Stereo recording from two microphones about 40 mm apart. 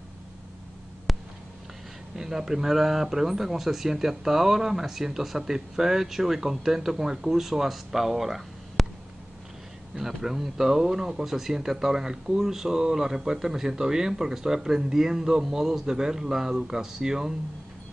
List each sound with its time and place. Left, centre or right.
1.1 s a sound: centre
2.1 s speech: centre
9.9 s speech: centre